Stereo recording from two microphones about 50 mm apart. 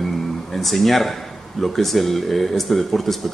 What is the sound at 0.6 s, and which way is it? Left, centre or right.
Speech, centre.